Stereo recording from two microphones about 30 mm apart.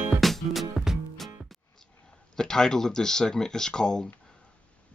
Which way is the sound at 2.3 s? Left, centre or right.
Left.